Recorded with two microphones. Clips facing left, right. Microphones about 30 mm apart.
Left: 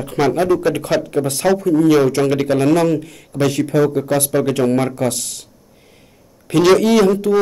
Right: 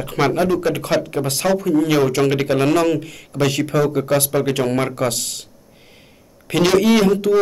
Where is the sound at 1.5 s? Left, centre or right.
Right.